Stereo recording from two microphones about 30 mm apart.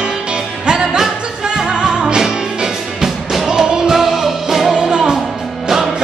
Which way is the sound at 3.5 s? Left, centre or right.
Right.